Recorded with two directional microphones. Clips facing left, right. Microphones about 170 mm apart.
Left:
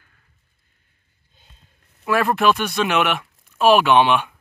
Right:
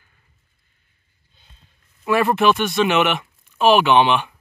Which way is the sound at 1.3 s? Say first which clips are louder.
Left 1 dB; 45° left (ahead or behind).